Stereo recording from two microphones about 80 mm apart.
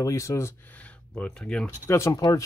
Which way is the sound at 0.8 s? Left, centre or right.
Centre.